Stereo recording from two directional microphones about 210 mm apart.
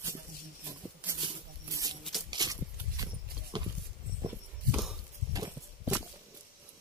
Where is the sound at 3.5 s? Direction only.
20° right (ahead or behind).